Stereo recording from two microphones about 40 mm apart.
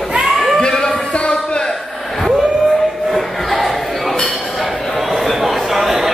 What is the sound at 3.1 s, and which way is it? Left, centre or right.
Crowd, centre.